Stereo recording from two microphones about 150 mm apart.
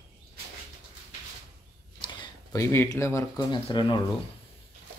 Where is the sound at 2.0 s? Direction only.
25° left (ahead or behind).